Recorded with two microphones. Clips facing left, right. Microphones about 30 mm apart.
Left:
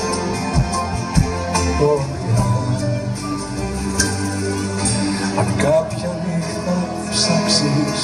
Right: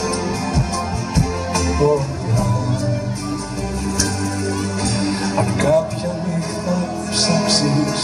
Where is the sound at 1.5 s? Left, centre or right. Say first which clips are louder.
Even; centre.